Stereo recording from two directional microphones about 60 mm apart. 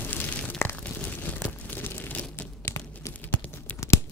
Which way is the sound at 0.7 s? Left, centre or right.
Left.